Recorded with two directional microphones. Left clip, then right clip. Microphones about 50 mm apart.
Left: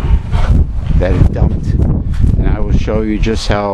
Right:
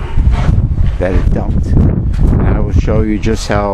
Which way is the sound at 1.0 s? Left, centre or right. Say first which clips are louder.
Even; right.